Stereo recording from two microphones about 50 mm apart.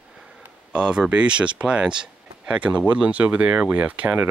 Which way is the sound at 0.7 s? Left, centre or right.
Right.